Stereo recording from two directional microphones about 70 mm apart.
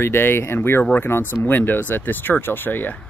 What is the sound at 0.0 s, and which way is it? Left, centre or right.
Speech, left.